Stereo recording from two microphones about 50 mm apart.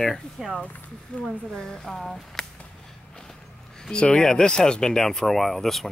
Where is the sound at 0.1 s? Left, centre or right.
Centre.